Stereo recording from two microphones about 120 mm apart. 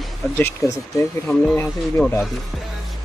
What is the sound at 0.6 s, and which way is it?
Speech, 25° left (ahead or behind).